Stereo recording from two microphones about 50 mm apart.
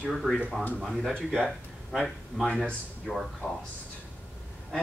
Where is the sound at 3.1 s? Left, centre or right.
Centre.